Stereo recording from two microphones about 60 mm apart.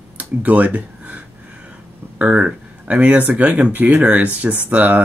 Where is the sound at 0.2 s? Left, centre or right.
Right.